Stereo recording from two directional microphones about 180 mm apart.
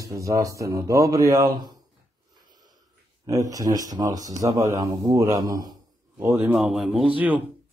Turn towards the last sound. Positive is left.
turn(degrees=-10)  # may be behind; listen again after turning